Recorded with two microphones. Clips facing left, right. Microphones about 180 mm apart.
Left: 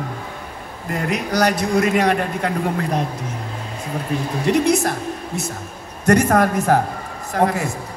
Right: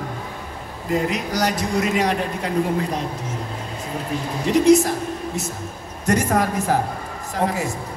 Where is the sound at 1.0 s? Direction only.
60° left (ahead or behind).